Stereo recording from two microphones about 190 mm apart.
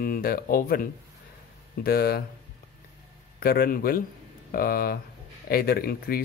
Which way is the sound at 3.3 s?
50° left (ahead or behind).